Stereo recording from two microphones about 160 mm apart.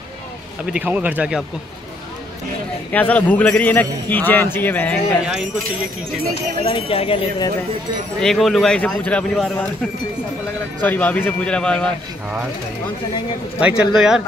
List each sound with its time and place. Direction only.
0.7 s speech: 10° right (ahead or behind)
2.9 s a man's voice: 10° left (ahead or behind)
6.6 s speech: 35° left (ahead or behind)
8.2 s speech: centre (ahead or behind)
10.8 s a man's voice: 10° left (ahead or behind)
13.6 s speech: 5° right (ahead or behind)